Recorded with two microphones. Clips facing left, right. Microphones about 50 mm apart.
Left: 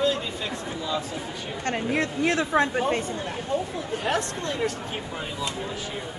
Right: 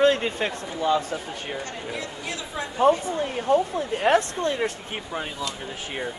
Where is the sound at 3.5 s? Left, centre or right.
Right.